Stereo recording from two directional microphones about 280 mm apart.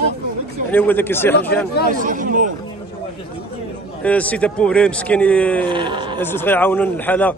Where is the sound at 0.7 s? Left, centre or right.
Centre.